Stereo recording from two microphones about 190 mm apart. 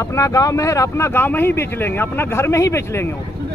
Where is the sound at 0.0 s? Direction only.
15° left (ahead or behind).